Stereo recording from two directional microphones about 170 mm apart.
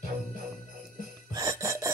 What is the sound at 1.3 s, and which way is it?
Music, 20° right (ahead or behind).